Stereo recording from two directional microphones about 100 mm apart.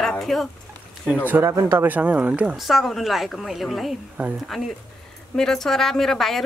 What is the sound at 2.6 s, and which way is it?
A woman's voice, centre (ahead or behind).